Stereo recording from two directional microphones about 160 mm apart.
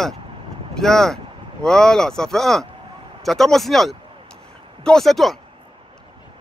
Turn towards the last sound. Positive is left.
turn(degrees=0)  # may be behind; listen again after turning